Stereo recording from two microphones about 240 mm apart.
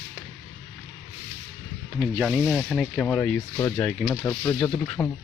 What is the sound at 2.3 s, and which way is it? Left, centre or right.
Rub, centre.